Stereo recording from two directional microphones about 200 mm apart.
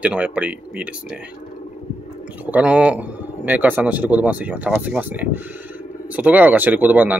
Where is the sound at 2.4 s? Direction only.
5° right (ahead or behind).